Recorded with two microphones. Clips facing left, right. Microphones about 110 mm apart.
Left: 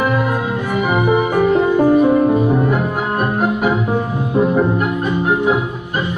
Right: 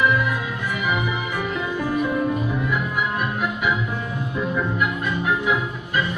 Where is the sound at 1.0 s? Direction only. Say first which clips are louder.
Left 12 dB; 45° left (ahead or behind).